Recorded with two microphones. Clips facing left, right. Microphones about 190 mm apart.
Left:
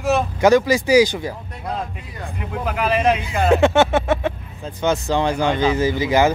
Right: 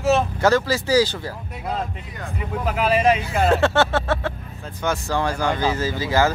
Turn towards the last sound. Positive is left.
turn(degrees=20)  # may be behind; listen again after turning